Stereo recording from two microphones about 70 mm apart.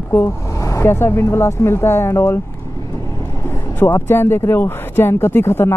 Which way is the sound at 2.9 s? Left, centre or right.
Left.